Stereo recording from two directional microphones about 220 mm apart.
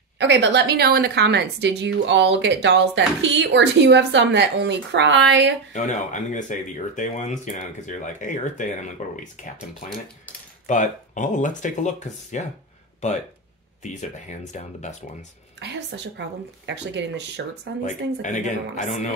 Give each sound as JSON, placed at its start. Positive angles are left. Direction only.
{"t": 0.2, "sound": "a woman's voice", "side_deg": -55}
{"t": 5.7, "sound": "speech", "side_deg": 35}
{"t": 10.7, "sound": "speech", "side_deg": 35}
{"t": 15.6, "sound": "a woman's voice", "side_deg": -55}
{"t": 17.8, "sound": "speech", "side_deg": 35}